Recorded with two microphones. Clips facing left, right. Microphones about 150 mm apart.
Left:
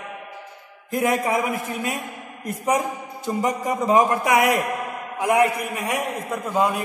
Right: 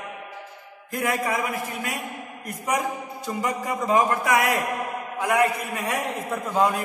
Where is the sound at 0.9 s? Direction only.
20° left (ahead or behind).